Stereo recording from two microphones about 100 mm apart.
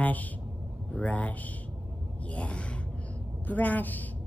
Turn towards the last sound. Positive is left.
turn(degrees=15)  # may be behind; listen again after turning